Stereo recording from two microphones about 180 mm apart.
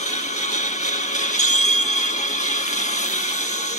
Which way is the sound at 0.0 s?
40° left (ahead or behind).